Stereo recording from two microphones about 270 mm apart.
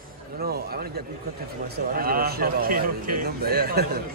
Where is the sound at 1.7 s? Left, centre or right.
Right.